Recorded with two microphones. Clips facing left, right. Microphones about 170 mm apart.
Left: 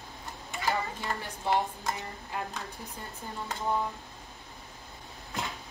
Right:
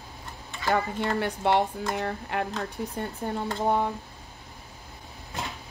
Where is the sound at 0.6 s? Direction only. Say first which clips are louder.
Right 6 dB; 65° right (ahead or behind).